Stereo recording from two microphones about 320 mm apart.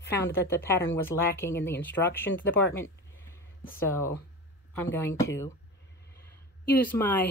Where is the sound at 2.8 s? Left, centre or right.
Centre.